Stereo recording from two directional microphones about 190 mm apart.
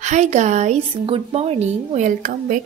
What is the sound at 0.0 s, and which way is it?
Speech, 40° right (ahead or behind).